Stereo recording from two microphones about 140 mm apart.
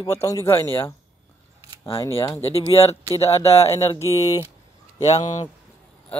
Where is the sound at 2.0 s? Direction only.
20° left (ahead or behind).